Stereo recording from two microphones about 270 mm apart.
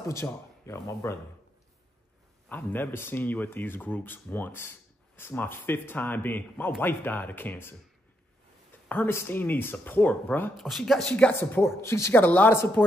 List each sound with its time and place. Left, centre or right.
0.1 s speech: centre
2.5 s speech: centre
8.8 s speech: centre